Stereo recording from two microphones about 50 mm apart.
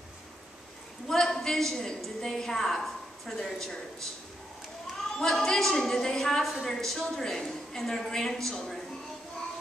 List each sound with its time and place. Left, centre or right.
1.0 s a sound: centre
2.0 s a woman's voice: centre
5.2 s a woman's voice: centre